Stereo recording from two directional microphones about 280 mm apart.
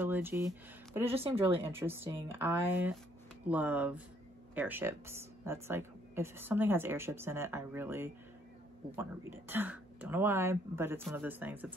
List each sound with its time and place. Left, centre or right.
0.0 s a sound: centre
1.1 s speech: centre
1.5 s speech: centre
9.5 s speech: centre